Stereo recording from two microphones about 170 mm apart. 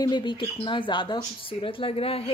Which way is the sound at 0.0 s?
25° left (ahead or behind).